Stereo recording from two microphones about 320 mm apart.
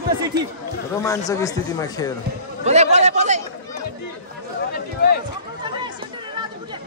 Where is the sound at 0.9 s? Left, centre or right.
Centre.